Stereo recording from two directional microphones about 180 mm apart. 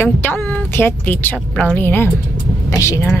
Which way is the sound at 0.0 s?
10° left (ahead or behind).